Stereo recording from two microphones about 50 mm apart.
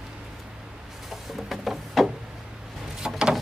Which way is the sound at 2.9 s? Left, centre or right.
Centre.